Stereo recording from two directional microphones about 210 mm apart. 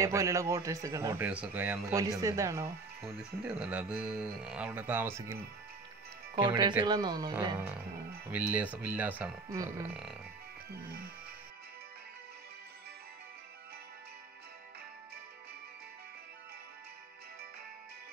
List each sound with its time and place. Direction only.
0.0 s a man's voice: 15° right (ahead or behind)